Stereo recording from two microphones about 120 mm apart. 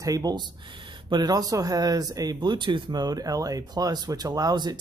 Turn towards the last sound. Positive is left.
turn(degrees=-35)  # may be behind; listen again after turning